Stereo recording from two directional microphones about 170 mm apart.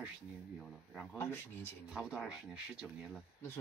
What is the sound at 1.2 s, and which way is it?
Speech, 15° left (ahead or behind).